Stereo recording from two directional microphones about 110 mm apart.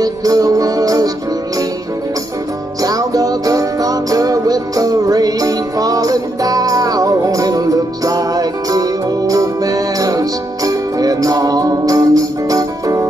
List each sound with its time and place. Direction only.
0.0 s music: 35° right (ahead or behind)
2.8 s music: 35° right (ahead or behind)